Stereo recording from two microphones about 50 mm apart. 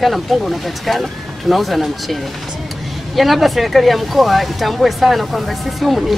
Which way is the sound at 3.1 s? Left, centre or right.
Centre.